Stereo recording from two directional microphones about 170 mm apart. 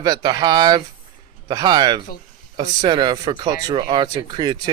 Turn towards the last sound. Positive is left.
turn(degrees=-25)  # may be behind; listen again after turning